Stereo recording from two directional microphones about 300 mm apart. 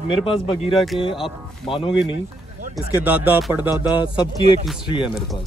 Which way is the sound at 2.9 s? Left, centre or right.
Centre.